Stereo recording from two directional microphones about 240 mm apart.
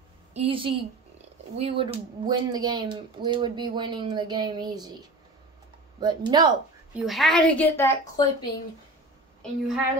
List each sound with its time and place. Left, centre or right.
0.3 s a woman's voice: right
5.9 s speech: centre
6.9 s a woman's voice: centre